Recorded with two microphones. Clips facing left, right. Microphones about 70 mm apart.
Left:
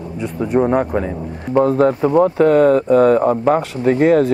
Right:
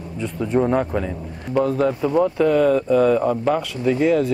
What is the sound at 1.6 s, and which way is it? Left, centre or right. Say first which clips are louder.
Speech: left 6 dB; left.